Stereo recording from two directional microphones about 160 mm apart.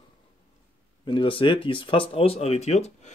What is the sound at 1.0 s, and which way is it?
Speech, 30° left (ahead or behind).